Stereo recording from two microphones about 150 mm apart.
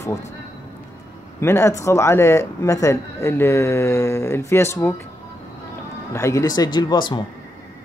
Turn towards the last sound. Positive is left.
turn(degrees=30)  # may be behind; listen again after turning